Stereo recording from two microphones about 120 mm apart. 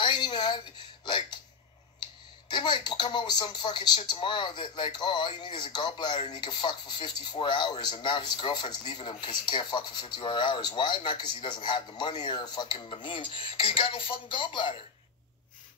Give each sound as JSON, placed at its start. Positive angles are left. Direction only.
{"t": 0.0, "sound": "a sound", "side_deg": 40}
{"t": 1.0, "sound": "hiccup", "side_deg": 40}
{"t": 2.5, "sound": "speech", "side_deg": 40}